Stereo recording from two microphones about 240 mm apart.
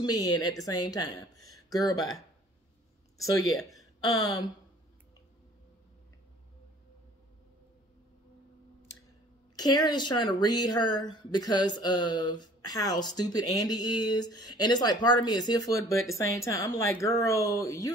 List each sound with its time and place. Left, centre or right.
0.0 s speech: centre
3.7 s speech: centre
9.6 s speech: centre